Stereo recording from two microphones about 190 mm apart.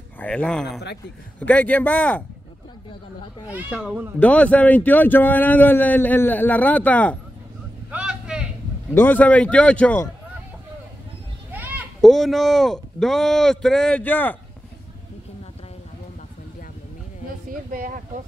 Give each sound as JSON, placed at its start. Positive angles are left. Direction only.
{"t": 0.2, "sound": "a man's voice", "side_deg": 5}
{"t": 3.5, "sound": "speech", "side_deg": -5}
{"t": 4.2, "sound": "a man's voice", "side_deg": 5}
{"t": 7.9, "sound": "a sound", "side_deg": -5}
{"t": 8.9, "sound": "a man's voice", "side_deg": 10}
{"t": 11.5, "sound": "children playing", "side_deg": -10}
{"t": 12.0, "sound": "a man's voice", "side_deg": 0}
{"t": 17.5, "sound": "a sound", "side_deg": -45}